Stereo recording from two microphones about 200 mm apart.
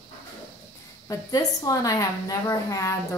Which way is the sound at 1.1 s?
20° left (ahead or behind).